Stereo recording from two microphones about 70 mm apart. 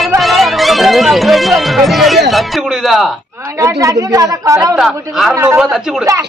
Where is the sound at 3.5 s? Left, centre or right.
Right.